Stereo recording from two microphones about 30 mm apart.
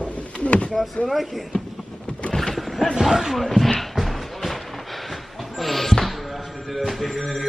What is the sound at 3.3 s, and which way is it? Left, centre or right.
Speech, centre.